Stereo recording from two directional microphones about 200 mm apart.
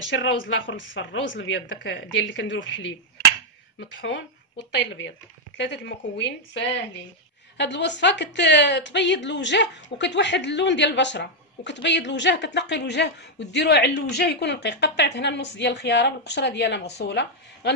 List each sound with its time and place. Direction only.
0.1 s a woman's voice: 65° left (ahead or behind)
5.6 s a woman's voice: 60° left (ahead or behind)